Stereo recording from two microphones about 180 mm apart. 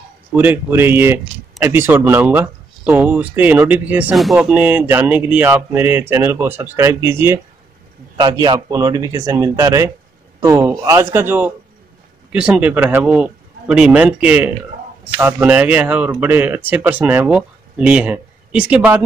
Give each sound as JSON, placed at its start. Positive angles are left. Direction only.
{"t": 0.3, "sound": "speech", "side_deg": -10}
{"t": 8.2, "sound": "speech", "side_deg": -25}